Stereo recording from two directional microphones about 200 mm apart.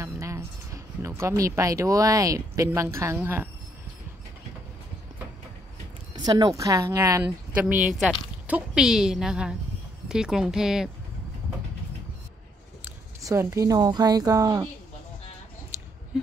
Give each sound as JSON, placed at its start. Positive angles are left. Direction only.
{"t": 0.0, "sound": "speech", "side_deg": -15}
{"t": 6.1, "sound": "a woman's voice", "side_deg": -20}
{"t": 12.8, "sound": "speech", "side_deg": -15}